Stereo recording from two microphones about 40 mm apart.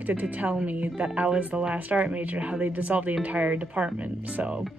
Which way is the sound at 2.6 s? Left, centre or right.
Right.